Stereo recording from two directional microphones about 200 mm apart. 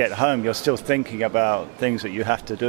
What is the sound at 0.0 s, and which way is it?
Speech, 15° right (ahead or behind).